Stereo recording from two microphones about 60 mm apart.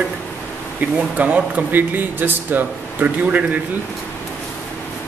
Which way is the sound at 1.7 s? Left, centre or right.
Right.